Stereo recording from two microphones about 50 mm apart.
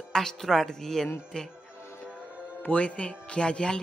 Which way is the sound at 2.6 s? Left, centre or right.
Left.